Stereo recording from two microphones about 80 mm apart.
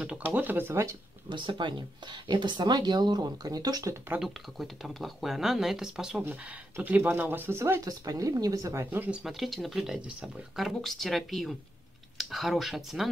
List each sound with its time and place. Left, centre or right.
0.2 s speech: right
1.3 s speech: right
4.2 s speech: centre
6.8 s speech: right
7.8 s speech: right
8.9 s speech: right
9.2 s speech: centre